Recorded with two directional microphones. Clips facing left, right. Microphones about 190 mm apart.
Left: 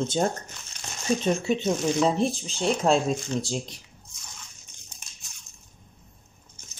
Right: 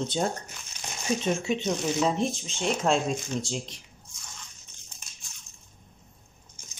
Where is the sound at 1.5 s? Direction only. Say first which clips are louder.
Left 3 dB; 35° left (ahead or behind).